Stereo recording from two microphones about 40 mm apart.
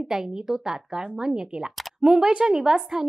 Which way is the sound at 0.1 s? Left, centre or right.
Centre.